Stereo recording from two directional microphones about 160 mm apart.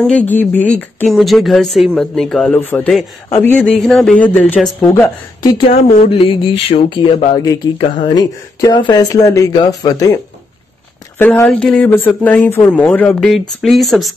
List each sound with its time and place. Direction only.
0.0 s speech: 10° left (ahead or behind)
1.1 s speech: centre (ahead or behind)
4.8 s speech: 20° left (ahead or behind)
11.1 s speech: 15° left (ahead or behind)